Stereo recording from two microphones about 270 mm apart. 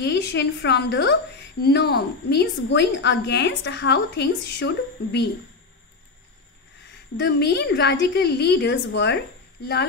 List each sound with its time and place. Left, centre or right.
0.0 s a woman's voice: left
7.2 s a woman's voice: left